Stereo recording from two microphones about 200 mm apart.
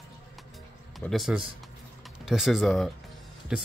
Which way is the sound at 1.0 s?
Centre (ahead or behind).